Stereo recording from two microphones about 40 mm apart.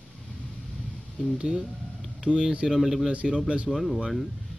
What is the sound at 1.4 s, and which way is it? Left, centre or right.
Speech, right.